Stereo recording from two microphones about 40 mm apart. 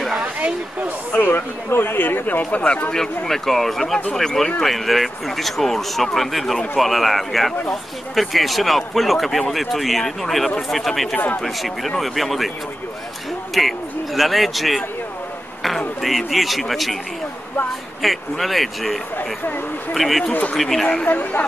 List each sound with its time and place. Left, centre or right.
0.2 s speech: right
1.1 s speech: left
2.9 s speech: centre
4.6 s speech: centre
13.6 s speech: centre
16.0 s speech: centre
18.0 s speech: centre
19.1 s speech: left
19.9 s speech: centre
21.0 s speech: left